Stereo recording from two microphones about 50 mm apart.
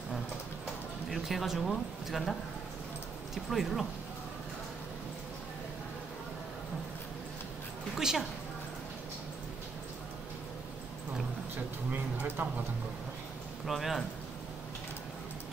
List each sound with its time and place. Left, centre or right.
1.1 s speech: centre
3.4 s speech: centre
7.9 s a woman's voice: centre
13.7 s speech: centre